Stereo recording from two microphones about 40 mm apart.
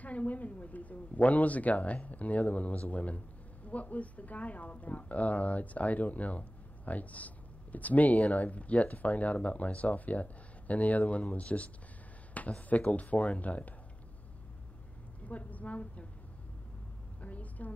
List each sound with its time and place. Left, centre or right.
0.0 s speech: left
15.2 s a woman's voice: left
17.2 s a sound: left